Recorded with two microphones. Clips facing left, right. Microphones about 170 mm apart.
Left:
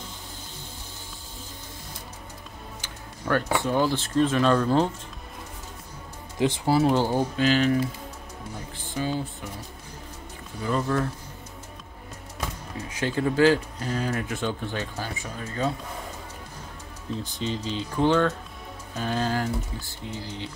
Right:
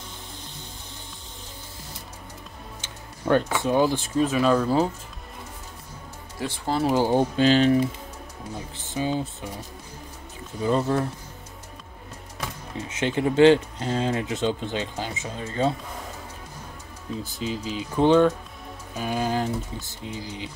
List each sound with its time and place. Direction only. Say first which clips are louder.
2.8 s speech: right 5 dB; 20° right (ahead or behind)
6.4 s speech: left 4 dB; 15° left (ahead or behind)
6.9 s speech: right 2 dB; 10° right (ahead or behind)
7.2 s speech: right 3 dB; 30° right (ahead or behind)
8.5 s speech: right 2 dB; 15° right (ahead or behind)
10.6 s speech: right 3 dB; 25° right (ahead or behind)
12.8 s speech: right 2 dB; 20° right (ahead or behind)
17.1 s speech: even; 5° right (ahead or behind)
17.9 s speech: right 4 dB; 15° right (ahead or behind)